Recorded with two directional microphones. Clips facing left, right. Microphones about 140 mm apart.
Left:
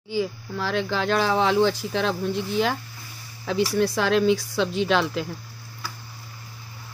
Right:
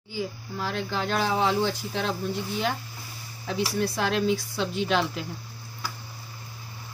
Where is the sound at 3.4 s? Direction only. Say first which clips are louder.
Left 5 dB; 90° left.